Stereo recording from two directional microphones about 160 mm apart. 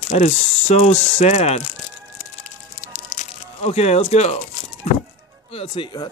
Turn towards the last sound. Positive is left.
turn(degrees=30)  # may be behind; listen again after turning